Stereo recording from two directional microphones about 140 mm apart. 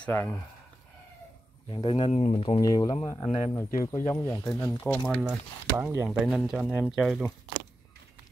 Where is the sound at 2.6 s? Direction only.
25° left (ahead or behind).